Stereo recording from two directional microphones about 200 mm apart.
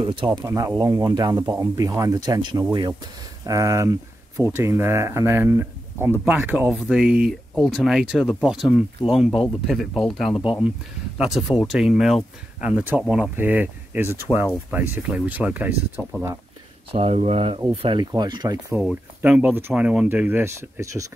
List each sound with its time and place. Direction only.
0.0 s speech: 25° right (ahead or behind)
0.3 s speech: 15° right (ahead or behind)
10.3 s speech: 25° left (ahead or behind)
11.1 s speech: centre (ahead or behind)
16.9 s speech: 30° right (ahead or behind)
18.7 s speech: centre (ahead or behind)